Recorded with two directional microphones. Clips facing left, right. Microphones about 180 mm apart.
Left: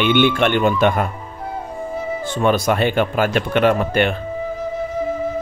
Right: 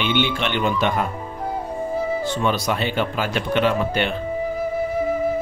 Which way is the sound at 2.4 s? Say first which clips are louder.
Left 9 dB; 50° left (ahead or behind).